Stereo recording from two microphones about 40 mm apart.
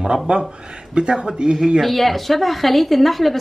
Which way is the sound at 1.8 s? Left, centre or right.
Centre.